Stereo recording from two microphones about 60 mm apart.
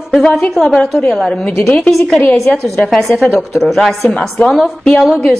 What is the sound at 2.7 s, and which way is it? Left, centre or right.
Speech, centre.